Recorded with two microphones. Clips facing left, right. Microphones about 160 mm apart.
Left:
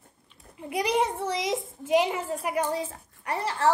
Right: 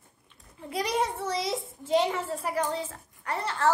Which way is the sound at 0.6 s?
15° left (ahead or behind).